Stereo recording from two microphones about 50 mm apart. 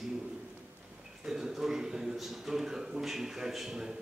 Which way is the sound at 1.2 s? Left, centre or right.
Centre.